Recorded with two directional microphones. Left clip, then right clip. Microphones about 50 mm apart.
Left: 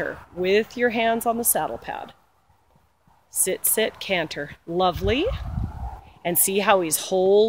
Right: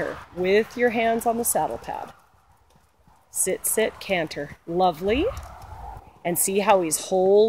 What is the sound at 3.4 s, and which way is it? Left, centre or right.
Speech, left.